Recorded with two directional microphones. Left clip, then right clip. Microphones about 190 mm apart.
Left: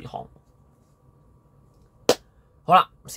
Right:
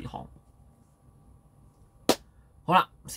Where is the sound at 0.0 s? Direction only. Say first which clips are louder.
Left 5 dB; 10° left (ahead or behind).